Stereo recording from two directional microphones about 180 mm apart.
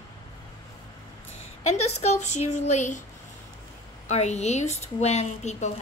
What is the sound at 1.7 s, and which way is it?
A woman's voice, 35° left (ahead or behind).